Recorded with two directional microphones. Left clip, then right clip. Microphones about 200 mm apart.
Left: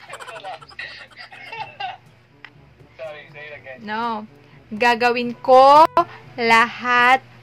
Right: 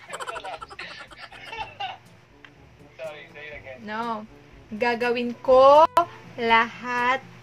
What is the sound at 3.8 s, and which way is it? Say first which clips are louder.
A woman's voice: left 5 dB; 30° left (ahead or behind).